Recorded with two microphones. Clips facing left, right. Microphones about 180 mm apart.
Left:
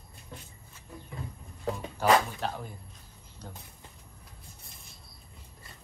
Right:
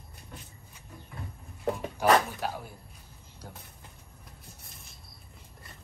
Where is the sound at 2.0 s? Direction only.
10° right (ahead or behind).